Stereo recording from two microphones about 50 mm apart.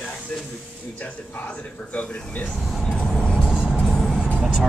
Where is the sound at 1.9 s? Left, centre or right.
Left.